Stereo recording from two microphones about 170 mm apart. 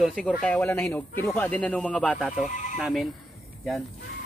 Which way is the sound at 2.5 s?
45° left (ahead or behind).